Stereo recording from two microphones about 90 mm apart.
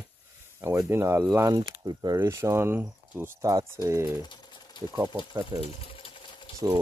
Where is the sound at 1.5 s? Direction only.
50° right (ahead or behind).